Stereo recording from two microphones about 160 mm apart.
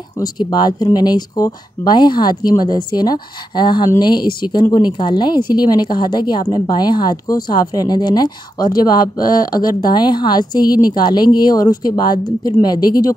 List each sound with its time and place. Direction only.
0.2 s a woman's voice: 25° left (ahead or behind)